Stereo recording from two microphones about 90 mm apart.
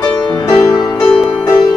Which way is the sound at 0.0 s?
50° left (ahead or behind).